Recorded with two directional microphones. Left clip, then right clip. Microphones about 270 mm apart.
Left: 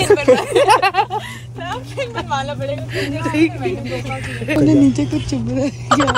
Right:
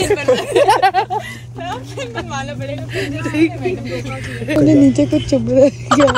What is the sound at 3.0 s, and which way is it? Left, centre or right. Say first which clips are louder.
Speech: right 1 dB; centre.